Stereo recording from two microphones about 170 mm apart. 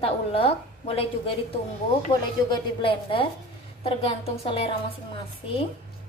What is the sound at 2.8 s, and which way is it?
A woman's voice, 30° left (ahead or behind).